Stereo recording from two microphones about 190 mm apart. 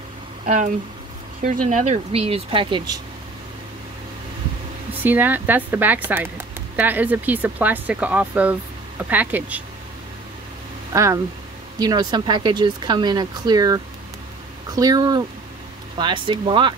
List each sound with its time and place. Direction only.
0.5 s speech: 40° right (ahead or behind)
5.0 s speech: 10° right (ahead or behind)
10.9 s speech: 15° right (ahead or behind)
14.8 s speech: 20° right (ahead or behind)